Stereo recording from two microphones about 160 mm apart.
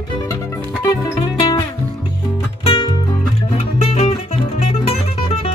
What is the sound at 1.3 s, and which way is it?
Music, 30° left (ahead or behind).